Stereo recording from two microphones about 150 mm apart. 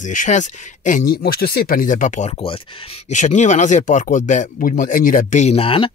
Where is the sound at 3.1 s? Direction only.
55° left (ahead or behind); by 5.9 s 40° left (ahead or behind).